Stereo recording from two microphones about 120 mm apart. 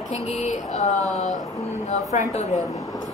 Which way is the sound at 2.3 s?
70° left (ahead or behind).